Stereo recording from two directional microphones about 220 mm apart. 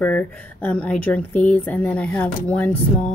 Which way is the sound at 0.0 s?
5° left (ahead or behind).